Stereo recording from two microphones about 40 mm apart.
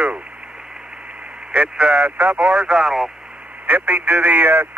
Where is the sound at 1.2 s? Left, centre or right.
Right.